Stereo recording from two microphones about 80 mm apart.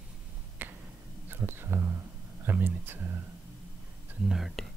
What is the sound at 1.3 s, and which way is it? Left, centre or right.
Whispering, right.